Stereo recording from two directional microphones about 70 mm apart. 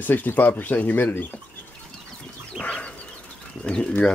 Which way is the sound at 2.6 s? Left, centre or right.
Centre.